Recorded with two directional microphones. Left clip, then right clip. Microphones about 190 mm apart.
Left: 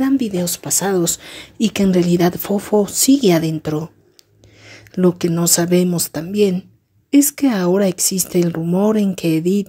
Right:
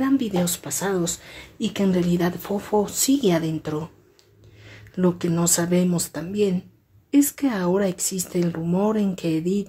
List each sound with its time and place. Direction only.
0.0 s speech: 25° left (ahead or behind); by 1.5 s 45° left (ahead or behind)
1.6 s speech: 35° left (ahead or behind)